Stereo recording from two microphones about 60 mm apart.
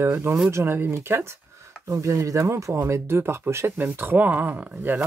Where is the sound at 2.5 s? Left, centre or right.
Right.